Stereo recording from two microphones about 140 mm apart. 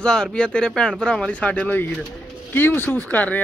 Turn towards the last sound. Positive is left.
turn(degrees=10)  # may be behind; listen again after turning